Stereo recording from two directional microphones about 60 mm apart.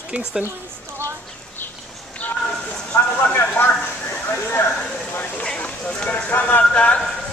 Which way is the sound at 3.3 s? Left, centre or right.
Left.